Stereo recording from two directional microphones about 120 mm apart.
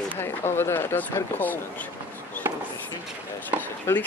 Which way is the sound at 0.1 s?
20° left (ahead or behind).